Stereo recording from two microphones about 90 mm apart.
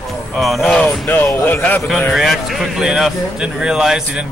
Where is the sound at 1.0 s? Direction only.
20° left (ahead or behind).